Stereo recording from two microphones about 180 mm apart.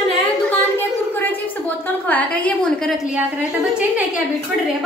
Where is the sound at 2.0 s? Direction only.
10° left (ahead or behind).